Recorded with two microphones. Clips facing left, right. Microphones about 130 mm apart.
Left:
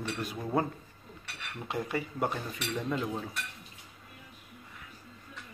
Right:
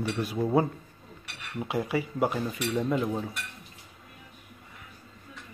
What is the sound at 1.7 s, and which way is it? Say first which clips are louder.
Speech: right 4 dB; 5° right (ahead or behind).